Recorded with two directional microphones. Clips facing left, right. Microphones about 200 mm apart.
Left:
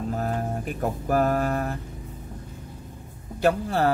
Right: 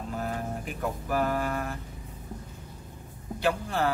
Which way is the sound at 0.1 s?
45° left (ahead or behind).